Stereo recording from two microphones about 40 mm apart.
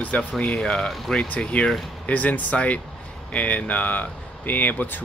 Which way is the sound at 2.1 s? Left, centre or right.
Left.